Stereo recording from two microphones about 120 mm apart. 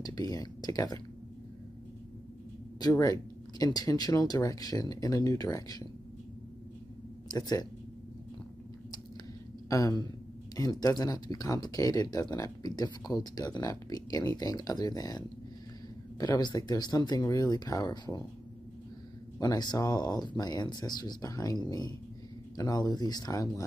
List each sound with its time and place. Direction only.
0.0 s speech: 30° left (ahead or behind)
2.8 s speech: 30° left (ahead or behind)
7.2 s speech: 30° left (ahead or behind)
9.7 s speech: 30° left (ahead or behind)
19.4 s speech: 35° left (ahead or behind)